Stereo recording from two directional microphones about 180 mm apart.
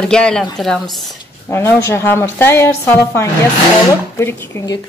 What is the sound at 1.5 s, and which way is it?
A woman's voice, 10° left (ahead or behind).